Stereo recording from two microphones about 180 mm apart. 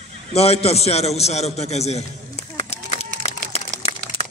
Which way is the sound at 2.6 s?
35° left (ahead or behind).